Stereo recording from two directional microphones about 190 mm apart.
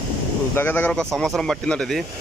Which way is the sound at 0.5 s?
10° left (ahead or behind).